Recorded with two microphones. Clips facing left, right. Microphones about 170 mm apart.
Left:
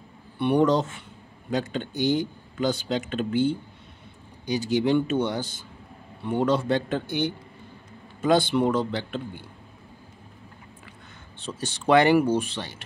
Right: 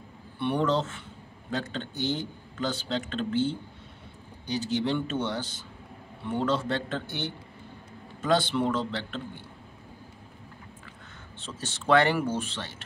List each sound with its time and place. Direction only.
0.4 s speech: 15° left (ahead or behind)
11.3 s speech: 15° left (ahead or behind)